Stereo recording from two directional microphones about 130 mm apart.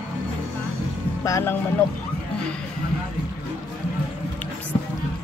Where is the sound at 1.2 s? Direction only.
25° left (ahead or behind).